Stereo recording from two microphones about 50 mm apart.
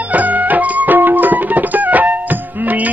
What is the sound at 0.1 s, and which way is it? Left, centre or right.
Music, right.